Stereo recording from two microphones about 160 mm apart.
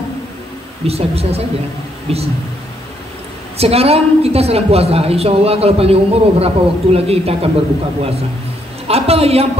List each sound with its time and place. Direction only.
0.8 s a woman's voice: 40° right (ahead or behind)
3.5 s a woman's voice: 40° right (ahead or behind)
8.8 s a woman's voice: 40° right (ahead or behind)